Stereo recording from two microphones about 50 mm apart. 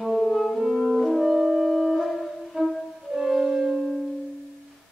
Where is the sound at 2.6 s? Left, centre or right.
Centre.